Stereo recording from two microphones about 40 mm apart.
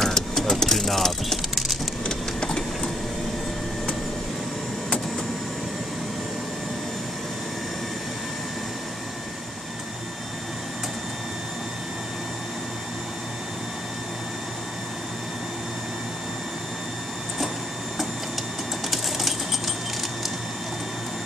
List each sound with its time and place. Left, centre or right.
0.0 s vehicle: centre
2.0 s printer: centre
18.9 s a sound: centre